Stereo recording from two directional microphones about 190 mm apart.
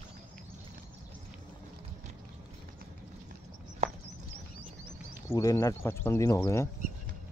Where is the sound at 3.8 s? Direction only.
35° right (ahead or behind).